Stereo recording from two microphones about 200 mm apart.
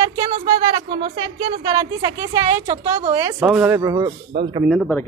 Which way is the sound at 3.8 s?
15° right (ahead or behind).